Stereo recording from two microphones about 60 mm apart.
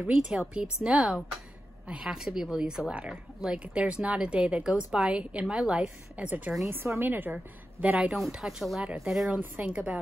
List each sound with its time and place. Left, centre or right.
0.0 s a woman's voice: centre
2.0 s a woman's voice: centre
6.1 s speech: right
6.7 s a woman's voice: right
7.8 s a woman's voice: centre
8.8 s a woman's voice: centre